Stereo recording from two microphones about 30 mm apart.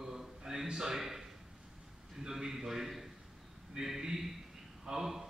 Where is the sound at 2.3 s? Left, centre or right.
Centre.